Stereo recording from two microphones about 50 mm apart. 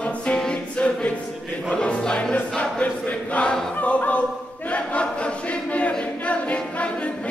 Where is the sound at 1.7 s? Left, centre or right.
Centre.